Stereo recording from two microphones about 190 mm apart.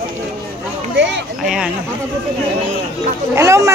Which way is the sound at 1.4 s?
5° right (ahead or behind).